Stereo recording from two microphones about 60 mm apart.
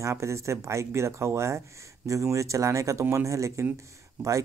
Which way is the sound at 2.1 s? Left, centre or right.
Right.